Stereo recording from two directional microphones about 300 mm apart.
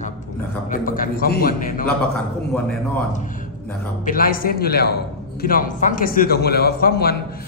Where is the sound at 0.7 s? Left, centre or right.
Left.